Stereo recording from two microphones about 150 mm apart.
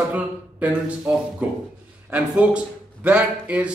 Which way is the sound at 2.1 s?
10° right (ahead or behind).